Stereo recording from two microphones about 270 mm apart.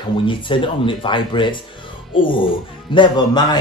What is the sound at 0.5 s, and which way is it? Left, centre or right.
Speech, centre.